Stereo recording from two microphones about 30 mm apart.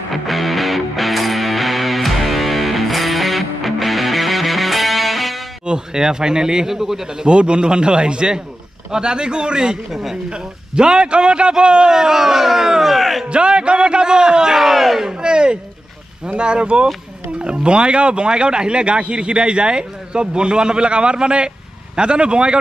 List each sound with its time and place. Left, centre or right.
0.1 s music: centre
5.7 s speech: right
7.2 s speech: right
11.9 s speech: centre
13.3 s speech: right
14.5 s speech: centre
15.0 s speech: right